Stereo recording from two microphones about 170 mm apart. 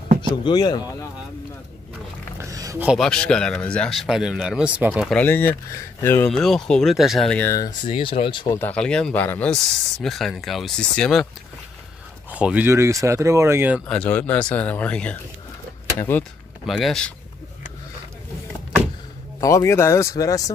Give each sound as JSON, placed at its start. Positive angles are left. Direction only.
{"t": 0.3, "sound": "speech", "side_deg": 25}
{"t": 2.3, "sound": "a sound", "side_deg": -20}
{"t": 3.0, "sound": "speech", "side_deg": 5}
{"t": 5.1, "sound": "speech", "side_deg": 10}
{"t": 8.5, "sound": "speech", "side_deg": 5}
{"t": 12.3, "sound": "speech", "side_deg": -10}
{"t": 13.8, "sound": "speech", "side_deg": 10}
{"t": 16.6, "sound": "speech", "side_deg": 0}
{"t": 19.4, "sound": "speech", "side_deg": 15}